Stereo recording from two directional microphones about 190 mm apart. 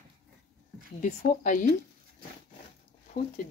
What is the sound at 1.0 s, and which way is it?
Speech, 40° left (ahead or behind).